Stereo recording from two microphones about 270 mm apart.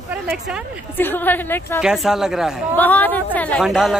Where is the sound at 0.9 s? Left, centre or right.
Centre.